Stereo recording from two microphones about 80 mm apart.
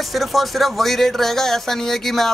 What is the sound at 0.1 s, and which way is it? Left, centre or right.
Speech, centre.